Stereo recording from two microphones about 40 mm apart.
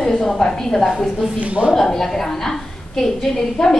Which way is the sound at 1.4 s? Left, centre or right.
Right.